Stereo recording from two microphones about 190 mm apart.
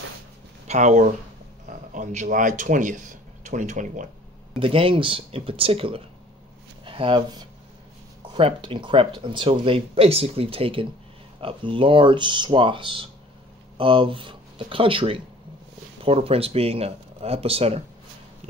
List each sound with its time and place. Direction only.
0.7 s speech: 40° right (ahead or behind)
4.6 s speech: 30° right (ahead or behind)